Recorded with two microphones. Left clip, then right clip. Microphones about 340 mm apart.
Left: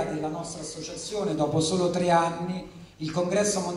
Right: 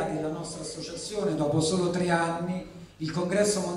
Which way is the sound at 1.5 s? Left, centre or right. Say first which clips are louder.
Left 2 dB; centre.